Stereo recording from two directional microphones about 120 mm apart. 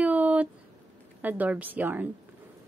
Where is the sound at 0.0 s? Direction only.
10° right (ahead or behind).